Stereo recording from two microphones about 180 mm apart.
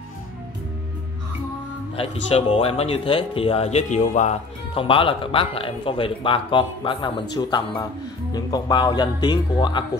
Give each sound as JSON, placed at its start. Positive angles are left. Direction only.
{"t": 2.0, "sound": "speech", "side_deg": 30}